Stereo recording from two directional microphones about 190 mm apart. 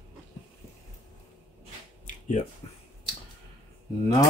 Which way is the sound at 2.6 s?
30° left (ahead or behind).